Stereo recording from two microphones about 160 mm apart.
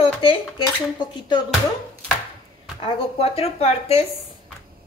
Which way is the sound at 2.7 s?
35° left (ahead or behind).